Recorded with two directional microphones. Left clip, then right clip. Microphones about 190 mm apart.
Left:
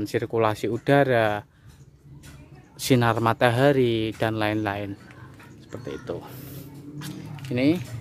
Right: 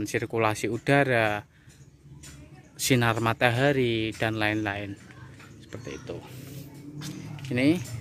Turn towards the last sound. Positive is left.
turn(degrees=0)  # may be behind; listen again after turning